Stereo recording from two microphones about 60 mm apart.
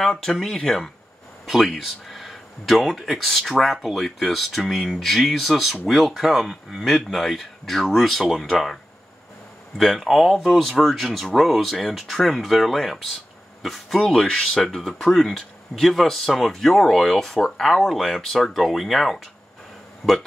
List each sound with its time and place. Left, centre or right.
0.0 s speech: centre
1.4 s speech: centre
9.8 s speech: centre